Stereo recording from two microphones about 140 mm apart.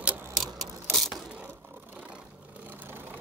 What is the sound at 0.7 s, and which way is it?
Gears, 15° right (ahead or behind).